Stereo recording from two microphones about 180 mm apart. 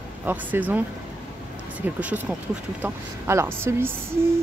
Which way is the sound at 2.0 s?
5° right (ahead or behind).